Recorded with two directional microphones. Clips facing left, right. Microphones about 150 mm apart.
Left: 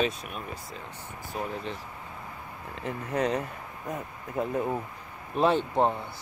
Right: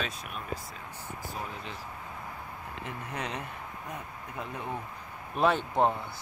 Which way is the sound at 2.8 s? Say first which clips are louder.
Left 10 dB; 40° left (ahead or behind).